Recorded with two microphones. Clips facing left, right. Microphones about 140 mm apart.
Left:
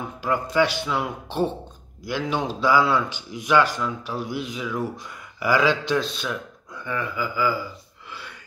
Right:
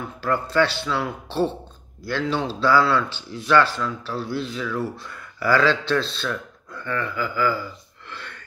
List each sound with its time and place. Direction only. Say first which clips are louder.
0.2 s speech: right 1 dB; 15° left (ahead or behind)